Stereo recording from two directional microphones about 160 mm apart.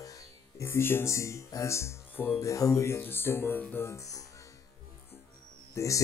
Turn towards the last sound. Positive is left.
turn(degrees=20)  # may be behind; listen again after turning